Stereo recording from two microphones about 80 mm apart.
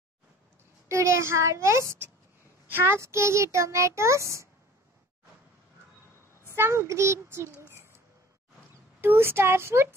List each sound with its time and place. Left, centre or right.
0.8 s a child's voice: right
6.4 s a child's voice: right
9.0 s a child's voice: right